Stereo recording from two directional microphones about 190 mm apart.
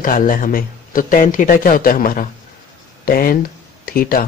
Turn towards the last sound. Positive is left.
turn(degrees=50)  # may be behind; listen again after turning